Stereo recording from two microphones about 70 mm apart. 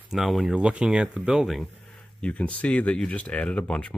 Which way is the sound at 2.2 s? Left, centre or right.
Centre.